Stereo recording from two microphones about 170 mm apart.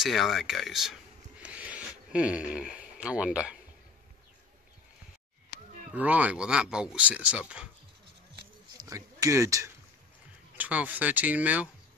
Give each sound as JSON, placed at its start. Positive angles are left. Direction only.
{"t": 0.0, "sound": "speech", "side_deg": 0}
{"t": 1.4, "sound": "a sound", "side_deg": -10}
{"t": 5.9, "sound": "speech", "side_deg": -10}
{"t": 8.7, "sound": "speech", "side_deg": -20}